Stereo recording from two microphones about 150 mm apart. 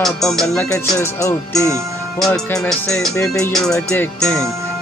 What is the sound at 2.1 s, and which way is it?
Music, 5° left (ahead or behind).